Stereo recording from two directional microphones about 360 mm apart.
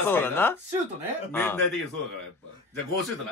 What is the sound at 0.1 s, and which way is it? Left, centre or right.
Speech, centre.